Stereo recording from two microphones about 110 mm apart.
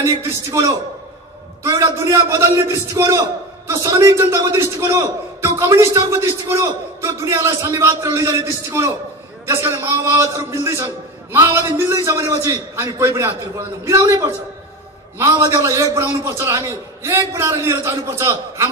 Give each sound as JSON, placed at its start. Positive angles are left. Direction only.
{"t": 0.0, "sound": "a man's voice", "side_deg": -25}
{"t": 1.7, "sound": "a man's voice", "side_deg": -30}
{"t": 15.5, "sound": "a man's voice", "side_deg": -30}